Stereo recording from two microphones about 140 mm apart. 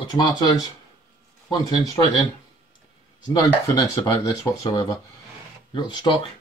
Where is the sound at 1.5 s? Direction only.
30° left (ahead or behind).